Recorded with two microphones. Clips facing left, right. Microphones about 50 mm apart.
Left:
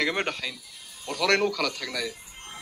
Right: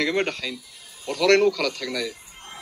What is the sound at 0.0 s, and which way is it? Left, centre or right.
Speech, left.